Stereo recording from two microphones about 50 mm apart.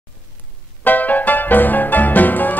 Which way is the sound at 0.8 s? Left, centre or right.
Left.